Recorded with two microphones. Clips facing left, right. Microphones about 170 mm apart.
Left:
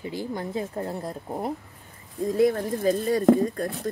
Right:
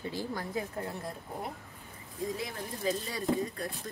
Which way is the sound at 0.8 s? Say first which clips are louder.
Left 7 dB; 35° left (ahead or behind).